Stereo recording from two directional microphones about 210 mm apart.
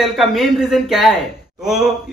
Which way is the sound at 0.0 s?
Centre (ahead or behind).